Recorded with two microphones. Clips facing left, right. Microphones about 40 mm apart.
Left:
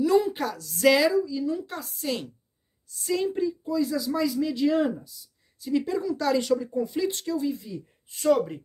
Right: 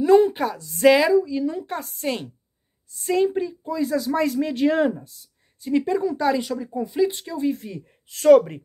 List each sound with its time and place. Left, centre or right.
0.0 s a woman's voice: right
0.3 s speech: right
1.4 s speech: right
3.0 s speech: right
5.7 s speech: right
6.4 s speech: centre
7.5 s speech: right
8.1 s speech: right
8.4 s speech: right